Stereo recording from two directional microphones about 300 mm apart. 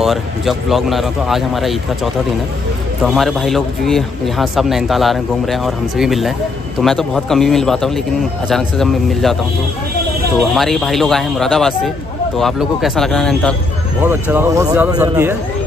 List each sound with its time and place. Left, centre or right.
0.0 s a man's voice: centre
3.0 s a man's voice: centre
10.5 s a man's voice: centre